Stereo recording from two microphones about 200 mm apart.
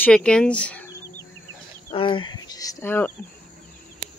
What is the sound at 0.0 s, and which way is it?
Speech, 5° left (ahead or behind).